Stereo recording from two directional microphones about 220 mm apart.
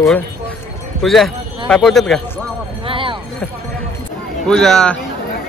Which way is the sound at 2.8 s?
25° right (ahead or behind).